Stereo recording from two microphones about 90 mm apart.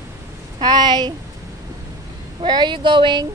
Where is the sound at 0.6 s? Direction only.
50° right (ahead or behind).